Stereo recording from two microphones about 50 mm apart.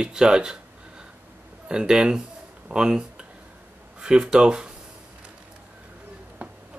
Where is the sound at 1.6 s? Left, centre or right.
Centre.